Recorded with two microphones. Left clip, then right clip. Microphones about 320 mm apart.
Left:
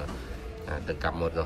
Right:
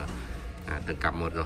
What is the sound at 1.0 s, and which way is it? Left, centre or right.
Speech, centre.